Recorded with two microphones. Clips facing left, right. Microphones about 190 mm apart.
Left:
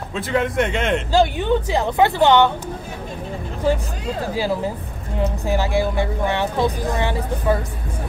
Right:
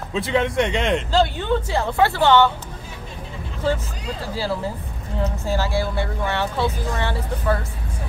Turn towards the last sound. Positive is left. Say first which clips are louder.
# left 3 dB
turn(degrees=15)  # may be behind; listen again after turning